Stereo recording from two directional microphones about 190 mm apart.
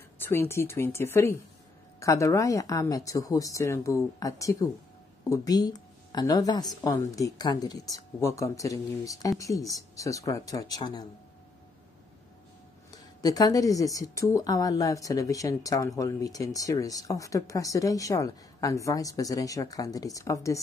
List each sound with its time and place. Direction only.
0.2 s speech: 15° left (ahead or behind)
12.9 s speech: 20° left (ahead or behind)